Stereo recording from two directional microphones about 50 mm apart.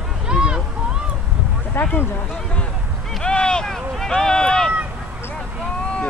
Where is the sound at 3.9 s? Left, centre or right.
Centre.